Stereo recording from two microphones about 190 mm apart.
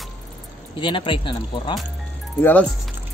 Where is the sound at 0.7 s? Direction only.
25° left (ahead or behind).